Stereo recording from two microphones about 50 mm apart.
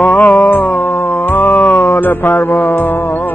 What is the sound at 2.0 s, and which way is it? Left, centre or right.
Speech, left.